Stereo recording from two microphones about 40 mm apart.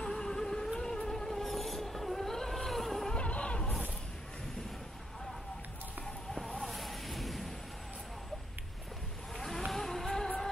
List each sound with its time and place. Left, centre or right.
0.0 s vehicle: centre
0.7 s music: centre
3.2 s vehicle: left
6.6 s a sound: centre
9.7 s music: centre